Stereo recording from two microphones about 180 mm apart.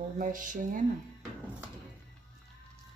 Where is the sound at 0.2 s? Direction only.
45° right (ahead or behind).